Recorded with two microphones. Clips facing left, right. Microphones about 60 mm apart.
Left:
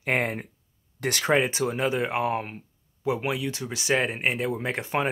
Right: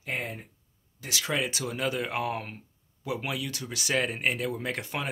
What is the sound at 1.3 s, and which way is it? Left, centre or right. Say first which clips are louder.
Speech: left 6 dB; left.